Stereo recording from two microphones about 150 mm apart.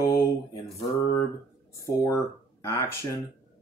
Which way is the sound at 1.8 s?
20° left (ahead or behind).